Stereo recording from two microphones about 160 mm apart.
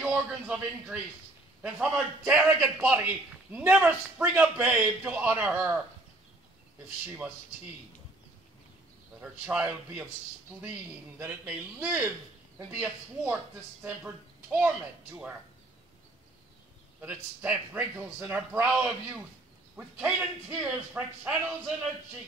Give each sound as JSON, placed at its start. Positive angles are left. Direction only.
{"t": 0.1, "sound": "a man's voice", "side_deg": -5}
{"t": 9.2, "sound": "a man's voice", "side_deg": -10}
{"t": 11.1, "sound": "a man's voice", "side_deg": -10}
{"t": 17.0, "sound": "a man's voice", "side_deg": -10}
{"t": 19.8, "sound": "a man's voice", "side_deg": -10}